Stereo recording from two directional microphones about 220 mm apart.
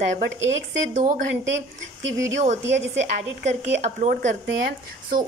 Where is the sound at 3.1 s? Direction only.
30° right (ahead or behind).